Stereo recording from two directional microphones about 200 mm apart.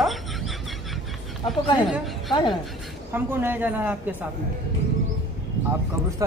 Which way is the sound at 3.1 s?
10° right (ahead or behind).